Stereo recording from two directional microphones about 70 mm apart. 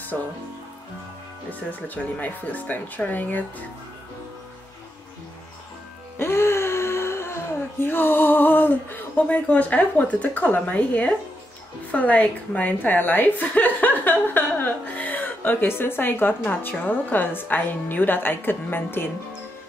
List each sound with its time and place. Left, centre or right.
0.1 s speech: centre
1.5 s a woman's voice: left
6.1 s music: left
7.8 s a woman's voice: left